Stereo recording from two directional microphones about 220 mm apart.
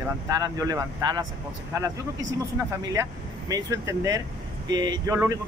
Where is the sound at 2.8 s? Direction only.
15° right (ahead or behind).